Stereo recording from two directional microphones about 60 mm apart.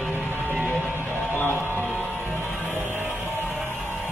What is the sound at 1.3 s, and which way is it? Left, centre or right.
Music, left.